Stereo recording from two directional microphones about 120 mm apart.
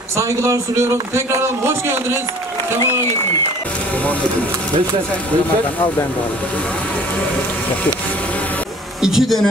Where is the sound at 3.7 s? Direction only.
10° left (ahead or behind).